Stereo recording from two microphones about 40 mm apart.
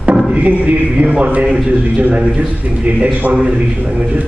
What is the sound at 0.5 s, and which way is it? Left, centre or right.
A man's voice, right.